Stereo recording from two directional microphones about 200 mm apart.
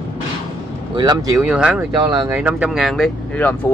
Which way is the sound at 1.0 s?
20° right (ahead or behind).